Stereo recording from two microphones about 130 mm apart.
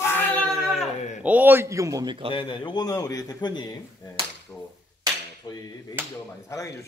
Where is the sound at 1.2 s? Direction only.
15° right (ahead or behind); by 2.3 s 40° right (ahead or behind).